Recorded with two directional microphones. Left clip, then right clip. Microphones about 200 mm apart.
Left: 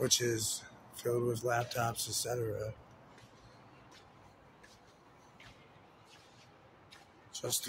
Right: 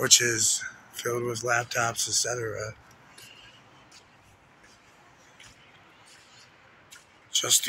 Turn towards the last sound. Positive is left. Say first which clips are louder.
# right 14 dB
turn(degrees=0)  # may be behind; listen again after turning